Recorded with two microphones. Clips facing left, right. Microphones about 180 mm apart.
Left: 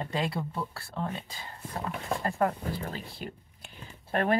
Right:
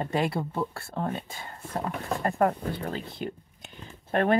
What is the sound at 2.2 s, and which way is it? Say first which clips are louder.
Speech: right 5 dB; 35° right (ahead or behind).